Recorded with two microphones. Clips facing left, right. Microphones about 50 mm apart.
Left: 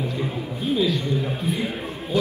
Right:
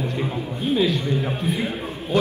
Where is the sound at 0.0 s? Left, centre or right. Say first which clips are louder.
Right 1 dB; right.